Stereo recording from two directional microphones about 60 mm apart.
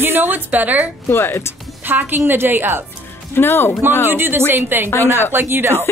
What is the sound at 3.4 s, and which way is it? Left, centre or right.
Speech, left.